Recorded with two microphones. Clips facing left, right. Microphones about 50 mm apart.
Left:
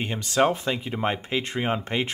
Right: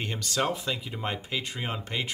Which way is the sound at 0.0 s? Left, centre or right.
Left.